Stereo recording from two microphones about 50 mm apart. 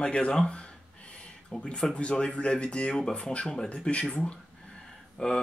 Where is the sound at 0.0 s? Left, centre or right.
Left.